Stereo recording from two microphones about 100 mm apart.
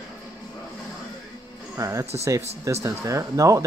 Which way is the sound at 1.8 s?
30° right (ahead or behind).